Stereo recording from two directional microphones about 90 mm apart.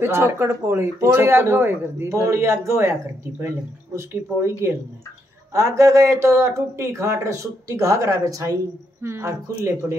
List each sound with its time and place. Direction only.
0.0 s speech: 30° right (ahead or behind)